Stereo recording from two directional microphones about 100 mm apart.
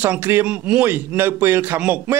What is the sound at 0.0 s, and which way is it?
A man's voice, 20° right (ahead or behind).